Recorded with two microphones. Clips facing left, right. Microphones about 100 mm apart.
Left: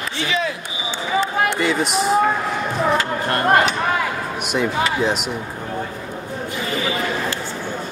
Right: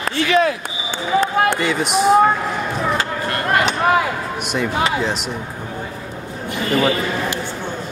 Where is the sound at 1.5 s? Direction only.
Centre (ahead or behind).